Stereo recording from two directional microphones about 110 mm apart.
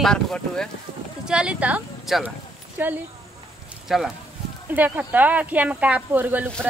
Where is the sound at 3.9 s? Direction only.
Centre (ahead or behind).